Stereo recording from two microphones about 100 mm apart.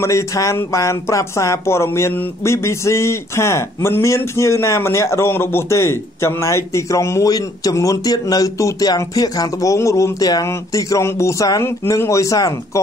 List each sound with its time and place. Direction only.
0.0 s speech: 30° left (ahead or behind)
11.6 s speech: 25° left (ahead or behind)